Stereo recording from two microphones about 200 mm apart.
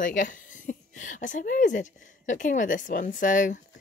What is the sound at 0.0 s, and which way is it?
A woman's voice, 40° left (ahead or behind).